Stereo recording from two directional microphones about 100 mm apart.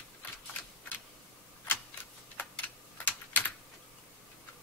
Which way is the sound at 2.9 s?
20° left (ahead or behind).